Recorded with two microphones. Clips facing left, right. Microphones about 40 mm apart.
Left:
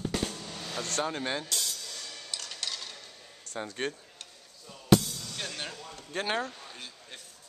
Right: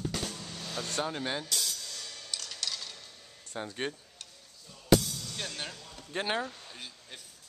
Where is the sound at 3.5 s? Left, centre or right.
Centre.